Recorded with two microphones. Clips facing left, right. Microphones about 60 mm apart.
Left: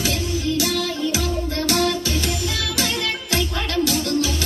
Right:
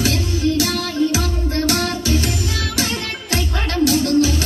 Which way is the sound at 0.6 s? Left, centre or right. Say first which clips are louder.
Right 4 dB; right.